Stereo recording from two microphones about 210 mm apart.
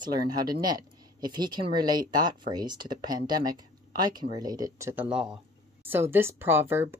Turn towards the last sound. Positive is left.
turn(degrees=-10)  # may be behind; listen again after turning